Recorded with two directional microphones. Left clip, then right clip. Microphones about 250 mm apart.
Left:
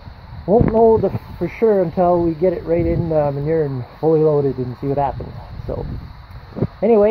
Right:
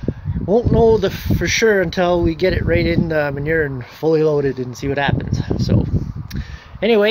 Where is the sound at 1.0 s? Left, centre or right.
Right.